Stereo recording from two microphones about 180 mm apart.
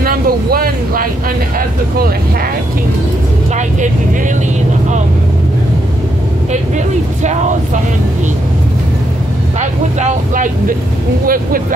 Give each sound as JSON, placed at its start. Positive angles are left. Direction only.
{"t": 0.0, "sound": "vehicle", "side_deg": -55}
{"t": 7.2, "sound": "a sound", "side_deg": -45}
{"t": 9.6, "sound": "speech", "side_deg": -40}